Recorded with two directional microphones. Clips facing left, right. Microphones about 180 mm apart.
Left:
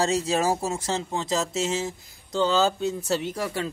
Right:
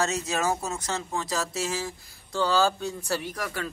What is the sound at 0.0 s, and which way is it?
A man's voice, 30° left (ahead or behind).